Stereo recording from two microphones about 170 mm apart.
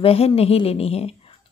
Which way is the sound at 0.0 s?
35° left (ahead or behind).